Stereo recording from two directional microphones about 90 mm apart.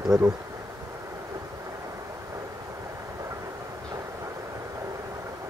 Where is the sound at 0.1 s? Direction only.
5° right (ahead or behind).